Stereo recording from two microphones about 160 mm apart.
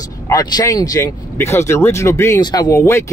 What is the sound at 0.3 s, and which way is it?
Speech, 20° left (ahead or behind).